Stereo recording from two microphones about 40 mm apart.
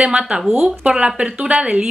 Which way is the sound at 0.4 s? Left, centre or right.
Centre.